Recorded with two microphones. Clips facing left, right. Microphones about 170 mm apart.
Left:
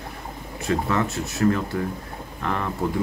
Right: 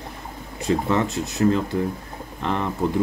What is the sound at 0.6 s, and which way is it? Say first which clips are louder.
Speech: right 2 dB; 20° right (ahead or behind).